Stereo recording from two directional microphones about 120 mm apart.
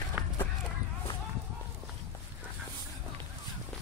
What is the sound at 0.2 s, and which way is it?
Run, 20° right (ahead or behind).